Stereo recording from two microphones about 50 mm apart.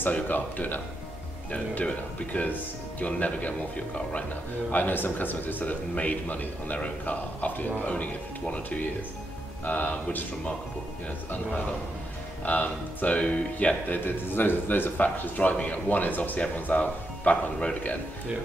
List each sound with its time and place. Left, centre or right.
0.1 s a man's voice: left
4.6 s a man's voice: left
12.4 s a man's voice: left
13.8 s a man's voice: left